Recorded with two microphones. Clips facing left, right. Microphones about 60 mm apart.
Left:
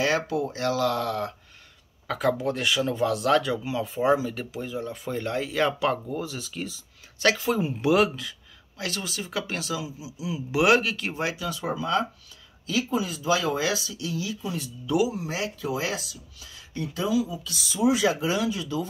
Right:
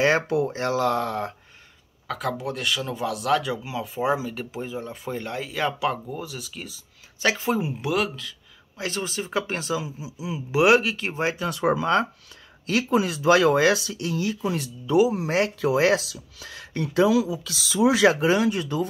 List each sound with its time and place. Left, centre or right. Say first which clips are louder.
0.0 s speech: right 4 dB; right
2.0 s speech: left 3 dB; centre
2.9 s speech: left 1 dB; centre
7.8 s speech: left 7 dB; centre
8.7 s speech: right 3 dB; right
11.3 s speech: right 6 dB; right
14.9 s speech: right 5 dB; right
15.1 s speech: right 7 dB; right
18.1 s speech: right 5 dB; right